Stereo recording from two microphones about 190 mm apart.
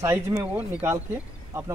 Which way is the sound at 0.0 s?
15° right (ahead or behind).